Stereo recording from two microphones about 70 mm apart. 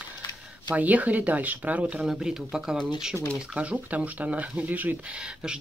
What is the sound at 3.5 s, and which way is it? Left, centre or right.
Speech, centre.